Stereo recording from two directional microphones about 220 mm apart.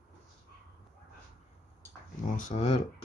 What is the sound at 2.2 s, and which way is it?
Speech, 35° left (ahead or behind).